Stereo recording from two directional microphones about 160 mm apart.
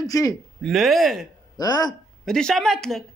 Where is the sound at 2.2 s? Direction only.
5° left (ahead or behind).